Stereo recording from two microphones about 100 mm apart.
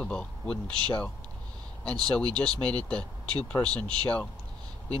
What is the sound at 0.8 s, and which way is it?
Speech, 15° left (ahead or behind).